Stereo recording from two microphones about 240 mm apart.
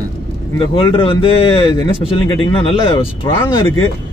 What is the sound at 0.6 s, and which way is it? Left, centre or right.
Speech, left.